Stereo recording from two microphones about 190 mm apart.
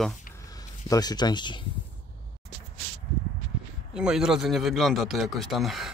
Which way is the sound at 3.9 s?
5° right (ahead or behind).